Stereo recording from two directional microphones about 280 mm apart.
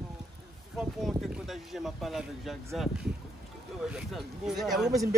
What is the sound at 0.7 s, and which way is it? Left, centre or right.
Speech, centre.